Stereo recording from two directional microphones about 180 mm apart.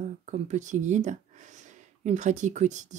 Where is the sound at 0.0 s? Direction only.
45° right (ahead or behind).